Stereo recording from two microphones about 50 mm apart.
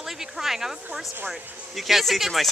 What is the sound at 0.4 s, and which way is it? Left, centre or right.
Speech, centre.